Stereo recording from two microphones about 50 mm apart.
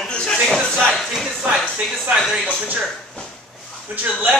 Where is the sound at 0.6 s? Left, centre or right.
Centre.